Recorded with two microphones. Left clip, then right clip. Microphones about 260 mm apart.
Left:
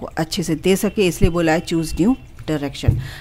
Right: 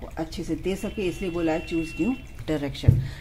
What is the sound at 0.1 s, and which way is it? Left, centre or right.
Speech, left.